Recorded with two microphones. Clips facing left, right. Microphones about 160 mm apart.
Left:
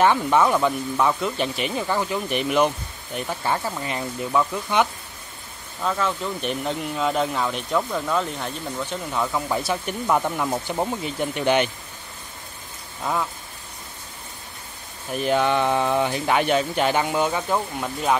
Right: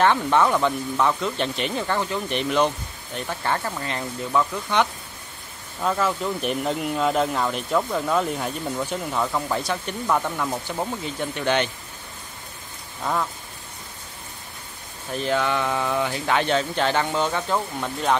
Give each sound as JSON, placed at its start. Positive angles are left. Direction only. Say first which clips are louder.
{"t": 0.0, "sound": "speech", "louder": "left 1 dB", "side_deg": 10}
{"t": 5.8, "sound": "speech", "louder": "right 1 dB", "side_deg": -5}
{"t": 13.0, "sound": "speech", "louder": "even", "side_deg": 5}
{"t": 15.0, "sound": "speech", "louder": "left 2 dB", "side_deg": 15}